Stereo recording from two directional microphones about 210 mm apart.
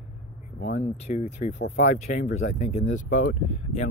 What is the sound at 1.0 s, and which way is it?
Speech, 30° left (ahead or behind).